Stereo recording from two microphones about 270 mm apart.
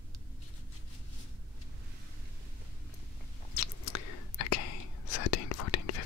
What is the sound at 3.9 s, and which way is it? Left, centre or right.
Whispering, left.